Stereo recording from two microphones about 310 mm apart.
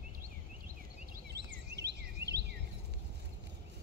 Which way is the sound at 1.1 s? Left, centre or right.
Right.